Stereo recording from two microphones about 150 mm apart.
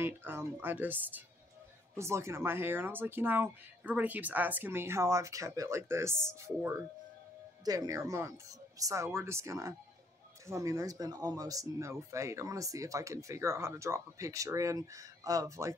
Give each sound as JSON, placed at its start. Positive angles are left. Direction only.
{"t": 0.0, "sound": "speech", "side_deg": -15}